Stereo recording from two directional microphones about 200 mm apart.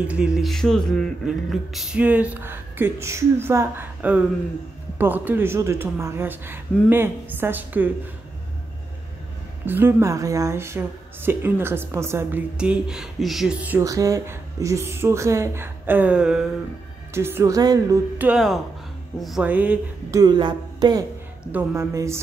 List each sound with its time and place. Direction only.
0.1 s speech: 5° right (ahead or behind)
9.7 s speech: 10° right (ahead or behind)
20.2 s music: 20° right (ahead or behind)
21.5 s speech: 10° right (ahead or behind)